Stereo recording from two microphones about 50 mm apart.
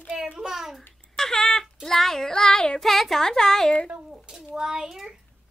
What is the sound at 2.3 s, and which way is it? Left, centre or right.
Child singing, centre.